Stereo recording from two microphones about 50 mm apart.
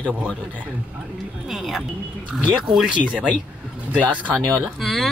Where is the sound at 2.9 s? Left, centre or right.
Right.